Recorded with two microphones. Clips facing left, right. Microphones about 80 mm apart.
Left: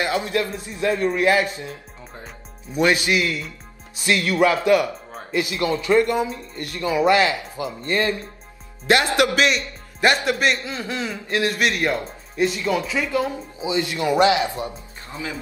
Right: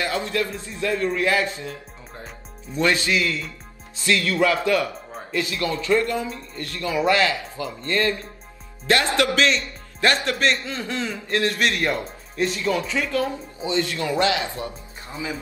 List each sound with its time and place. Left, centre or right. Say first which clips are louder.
0.0 s a man's voice: left 2 dB; left